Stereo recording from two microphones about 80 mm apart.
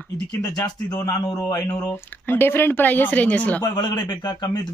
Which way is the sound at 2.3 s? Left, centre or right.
Left.